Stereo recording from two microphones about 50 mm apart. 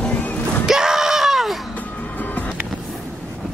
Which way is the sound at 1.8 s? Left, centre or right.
Left.